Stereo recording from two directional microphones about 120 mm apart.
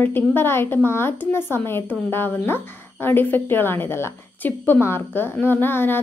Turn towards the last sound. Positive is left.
turn(degrees=15)  # may be behind; listen again after turning